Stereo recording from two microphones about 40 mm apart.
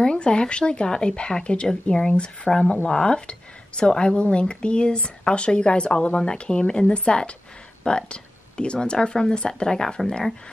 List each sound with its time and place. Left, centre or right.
0.0 s speech: left